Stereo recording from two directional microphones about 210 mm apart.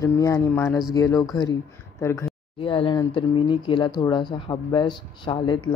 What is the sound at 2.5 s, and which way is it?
Speech, 25° left (ahead or behind).